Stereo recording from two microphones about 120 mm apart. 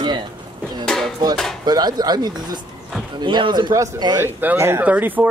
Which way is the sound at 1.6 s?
35° right (ahead or behind).